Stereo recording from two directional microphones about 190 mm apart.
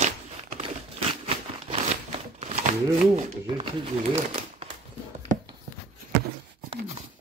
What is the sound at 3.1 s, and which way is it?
Speech, 30° right (ahead or behind).